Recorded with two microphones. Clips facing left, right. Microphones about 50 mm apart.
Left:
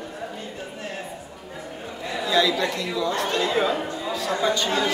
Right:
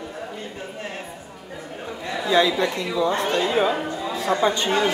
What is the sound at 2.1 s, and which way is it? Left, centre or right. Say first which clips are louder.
A woman's voice: right 2 dB; right.